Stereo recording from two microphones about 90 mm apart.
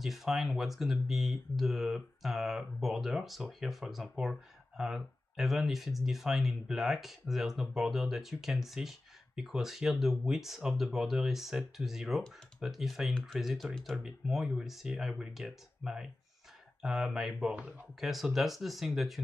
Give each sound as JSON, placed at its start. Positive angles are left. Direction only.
{"t": 0.0, "sound": "speech", "side_deg": 0}